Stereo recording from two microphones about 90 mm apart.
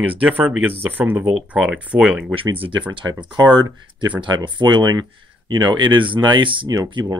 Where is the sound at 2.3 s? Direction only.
80° right; by 3.1 s 65° right (ahead or behind).